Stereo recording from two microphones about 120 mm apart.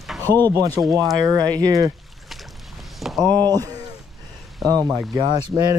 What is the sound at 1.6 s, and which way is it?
Speech, 30° right (ahead or behind).